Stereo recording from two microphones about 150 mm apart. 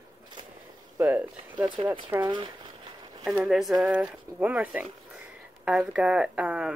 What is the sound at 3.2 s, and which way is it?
Speech, centre (ahead or behind).